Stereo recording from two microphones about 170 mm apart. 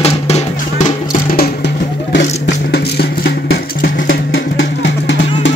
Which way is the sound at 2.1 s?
80° left.